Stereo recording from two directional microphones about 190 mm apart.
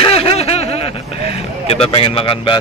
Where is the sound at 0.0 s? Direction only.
30° left (ahead or behind).